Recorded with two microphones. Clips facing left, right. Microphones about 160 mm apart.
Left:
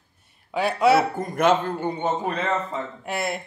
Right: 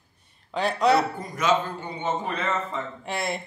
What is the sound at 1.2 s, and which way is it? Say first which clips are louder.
Speech: left 4 dB; 55° left (ahead or behind).